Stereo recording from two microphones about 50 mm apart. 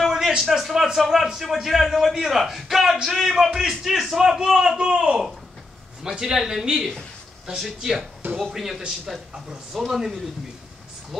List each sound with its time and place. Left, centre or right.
0.4 s a man's voice: centre
8.2 s speech: right
8.5 s a man's voice: centre